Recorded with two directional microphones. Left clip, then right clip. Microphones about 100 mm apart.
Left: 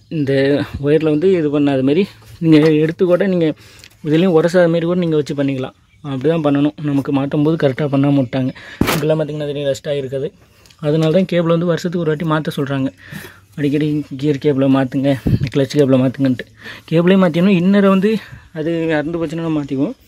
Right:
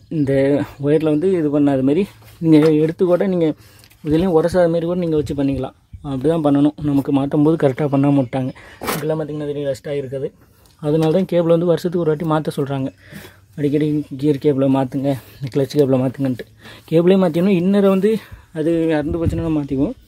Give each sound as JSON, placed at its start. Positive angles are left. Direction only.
{"t": 0.3, "sound": "speech", "side_deg": 5}
{"t": 4.0, "sound": "speech", "side_deg": 5}
{"t": 9.2, "sound": "speech", "side_deg": 25}
{"t": 10.8, "sound": "speech", "side_deg": 0}
{"t": 18.2, "sound": "speech", "side_deg": -15}
{"t": 18.9, "sound": "speech", "side_deg": 0}